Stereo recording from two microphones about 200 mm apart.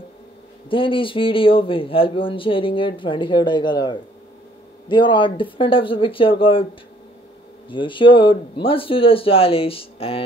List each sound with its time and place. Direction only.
0.7 s a man's voice: 25° left (ahead or behind)
7.7 s a man's voice: 25° left (ahead or behind)